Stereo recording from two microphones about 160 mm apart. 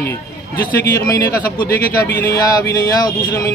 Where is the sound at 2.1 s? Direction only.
70° left (ahead or behind).